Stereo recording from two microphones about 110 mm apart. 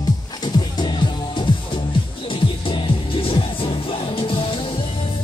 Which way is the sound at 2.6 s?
55° left (ahead or behind).